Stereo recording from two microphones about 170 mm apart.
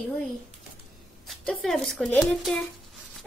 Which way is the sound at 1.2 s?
Centre (ahead or behind).